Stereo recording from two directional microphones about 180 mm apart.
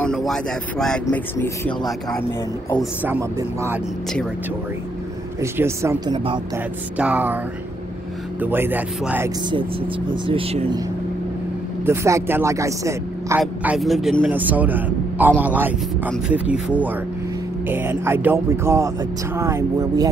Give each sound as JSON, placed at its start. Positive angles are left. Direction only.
{"t": 0.0, "sound": "speech", "side_deg": 0}
{"t": 1.0, "sound": "speech", "side_deg": 15}
{"t": 3.0, "sound": "speech", "side_deg": -15}
{"t": 5.4, "sound": "speech", "side_deg": -15}
{"t": 6.1, "sound": "speech", "side_deg": -30}
{"t": 6.5, "sound": "speech", "side_deg": -10}
{"t": 8.4, "sound": "speech", "side_deg": -10}
{"t": 10.0, "sound": "speech", "side_deg": -30}
{"t": 11.8, "sound": "speech", "side_deg": -15}
{"t": 13.4, "sound": "speech", "side_deg": -5}